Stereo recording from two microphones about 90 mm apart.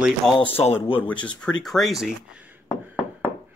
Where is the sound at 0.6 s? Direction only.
90° left.